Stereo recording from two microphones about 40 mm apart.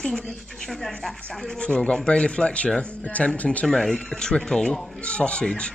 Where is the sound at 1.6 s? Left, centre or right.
Left.